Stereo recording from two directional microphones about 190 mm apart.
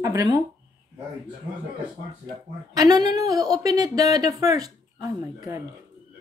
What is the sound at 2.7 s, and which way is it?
Speech, 20° right (ahead or behind).